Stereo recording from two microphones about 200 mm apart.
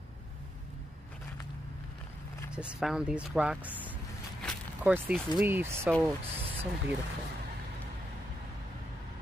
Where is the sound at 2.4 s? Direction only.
5° right (ahead or behind).